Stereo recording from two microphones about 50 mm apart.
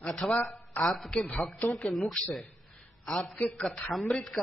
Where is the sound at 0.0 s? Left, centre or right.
Centre.